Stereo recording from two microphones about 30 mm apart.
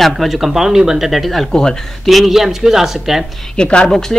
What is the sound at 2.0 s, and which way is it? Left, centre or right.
Speech, centre.